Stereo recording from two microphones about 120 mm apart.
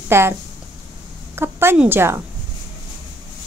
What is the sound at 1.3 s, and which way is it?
Speech, 20° right (ahead or behind).